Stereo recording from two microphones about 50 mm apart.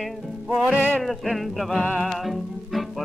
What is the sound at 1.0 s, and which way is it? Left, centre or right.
Music, centre.